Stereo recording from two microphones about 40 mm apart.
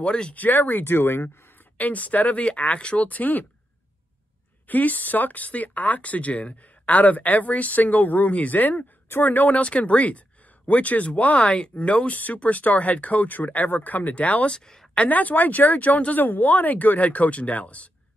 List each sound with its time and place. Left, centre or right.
0.0 s a woman's voice: left
0.3 s speech: left
1.8 s speech: left
3.1 s speech: left
4.6 s speech: left
9.6 s speech: left
14.5 s a woman's voice: centre
15.0 s speech: left